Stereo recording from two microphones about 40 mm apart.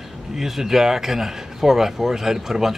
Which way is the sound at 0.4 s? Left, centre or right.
Centre.